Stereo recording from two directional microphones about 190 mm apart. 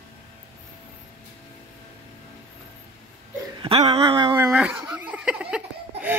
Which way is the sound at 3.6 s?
30° right (ahead or behind).